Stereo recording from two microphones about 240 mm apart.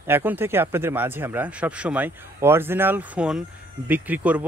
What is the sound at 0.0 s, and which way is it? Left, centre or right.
Speech, centre.